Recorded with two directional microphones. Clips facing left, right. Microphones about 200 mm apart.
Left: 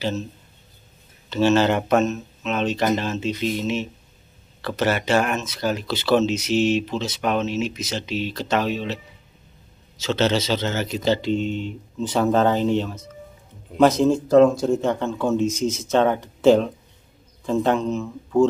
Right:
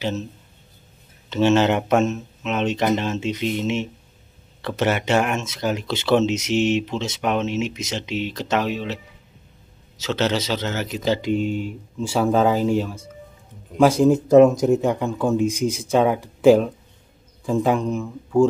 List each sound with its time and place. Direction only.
1.3 s speech: 20° right (ahead or behind)
10.0 s speech: 10° right (ahead or behind)